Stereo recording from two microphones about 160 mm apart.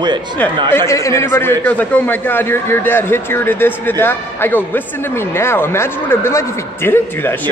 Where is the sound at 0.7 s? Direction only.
20° left (ahead or behind).